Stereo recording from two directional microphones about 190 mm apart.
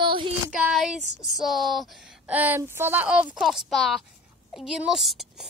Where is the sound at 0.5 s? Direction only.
5° right (ahead or behind).